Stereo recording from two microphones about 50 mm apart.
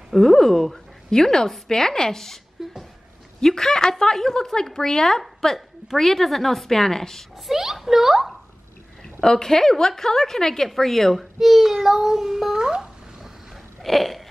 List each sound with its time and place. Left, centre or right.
0.1 s a woman's voice: centre
2.6 s music: centre
3.3 s a woman's voice: centre
7.4 s speech: centre
9.2 s a woman's voice: centre
12.5 s a sound: centre
13.8 s a woman's voice: centre